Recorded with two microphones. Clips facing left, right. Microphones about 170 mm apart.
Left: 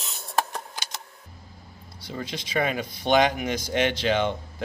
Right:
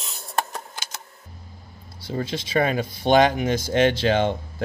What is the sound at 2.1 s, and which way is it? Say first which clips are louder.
Speech: right 6 dB; 30° right (ahead or behind).